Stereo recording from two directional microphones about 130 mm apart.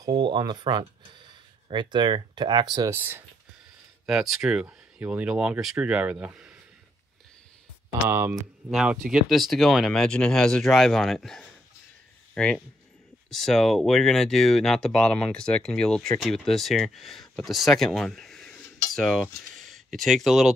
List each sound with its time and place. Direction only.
0.0 s speech: 35° right (ahead or behind)
2.9 s speech: 15° right (ahead or behind)
4.0 s speech: 5° right (ahead or behind)
8.1 s speech: 15° right (ahead or behind)
8.6 s speech: 5° right (ahead or behind)